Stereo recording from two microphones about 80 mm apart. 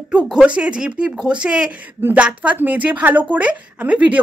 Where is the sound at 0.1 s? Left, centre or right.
Centre.